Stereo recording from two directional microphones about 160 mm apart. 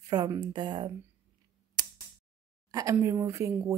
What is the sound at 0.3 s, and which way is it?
Speech, 30° right (ahead or behind).